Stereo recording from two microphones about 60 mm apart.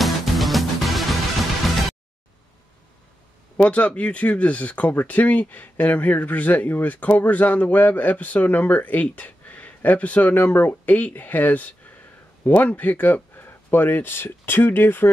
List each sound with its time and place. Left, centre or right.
0.0 s music: centre
3.5 s speech: left